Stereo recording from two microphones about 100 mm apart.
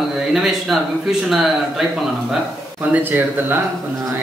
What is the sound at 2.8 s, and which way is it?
Speech, 20° right (ahead or behind).